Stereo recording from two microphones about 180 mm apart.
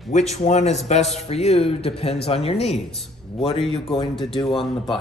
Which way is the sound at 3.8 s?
25° left (ahead or behind).